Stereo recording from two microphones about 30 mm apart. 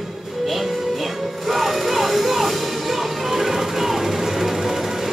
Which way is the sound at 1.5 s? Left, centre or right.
Centre.